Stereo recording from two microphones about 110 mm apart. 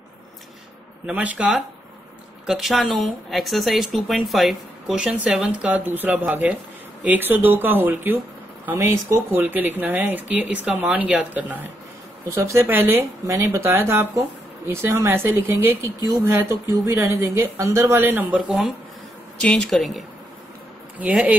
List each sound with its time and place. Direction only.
1.0 s speech: 10° right (ahead or behind)
2.4 s speech: centre (ahead or behind)
12.3 s speech: 25° right (ahead or behind)
19.4 s speech: 5° left (ahead or behind)
21.0 s speech: 10° right (ahead or behind)